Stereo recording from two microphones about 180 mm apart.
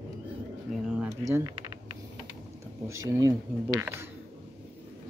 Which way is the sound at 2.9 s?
15° right (ahead or behind).